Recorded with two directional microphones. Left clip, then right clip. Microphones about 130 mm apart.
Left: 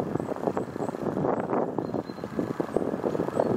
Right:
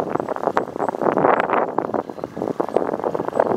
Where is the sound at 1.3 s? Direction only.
25° right (ahead or behind).